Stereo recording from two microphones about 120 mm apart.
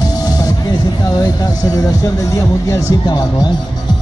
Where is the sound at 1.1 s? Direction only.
35° left (ahead or behind).